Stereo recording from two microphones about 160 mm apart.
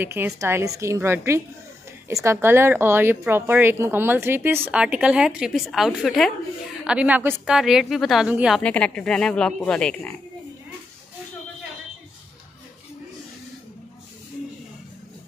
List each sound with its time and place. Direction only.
0.0 s a woman's voice: 15° right (ahead or behind)
8.6 s speech: 5° left (ahead or behind)